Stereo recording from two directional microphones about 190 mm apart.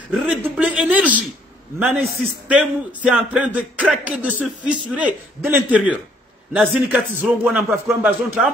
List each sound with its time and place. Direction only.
0.3 s a man's voice: 5° right (ahead or behind)